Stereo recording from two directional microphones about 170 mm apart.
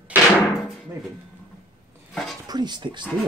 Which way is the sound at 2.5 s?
25° right (ahead or behind).